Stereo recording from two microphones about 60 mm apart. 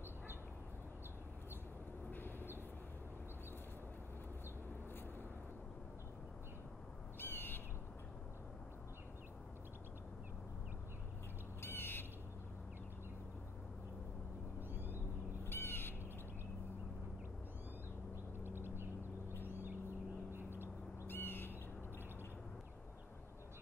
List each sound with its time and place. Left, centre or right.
2.0 s a sound: left
7.2 s owl: left
11.6 s bird: left
14.7 s owl: right
15.4 s bird: left
18.4 s a sound: right
21.1 s owl: left